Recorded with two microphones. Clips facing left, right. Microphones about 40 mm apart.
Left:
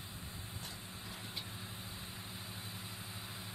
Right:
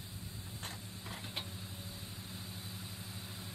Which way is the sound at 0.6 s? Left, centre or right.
Right.